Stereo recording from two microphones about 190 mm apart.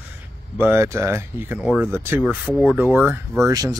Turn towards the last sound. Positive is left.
turn(degrees=-20)  # may be behind; listen again after turning